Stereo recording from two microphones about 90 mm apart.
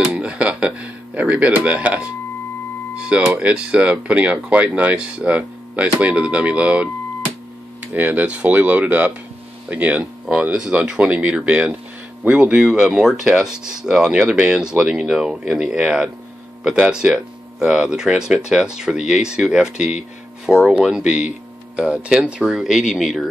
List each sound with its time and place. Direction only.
0.1 s a sound: 15° right (ahead or behind)
3.0 s speech: 10° right (ahead or behind)
7.9 s speech: 20° right (ahead or behind)
16.9 s speech: 10° right (ahead or behind)